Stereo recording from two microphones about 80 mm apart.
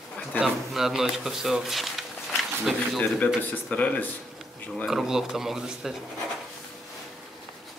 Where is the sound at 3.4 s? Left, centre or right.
Centre.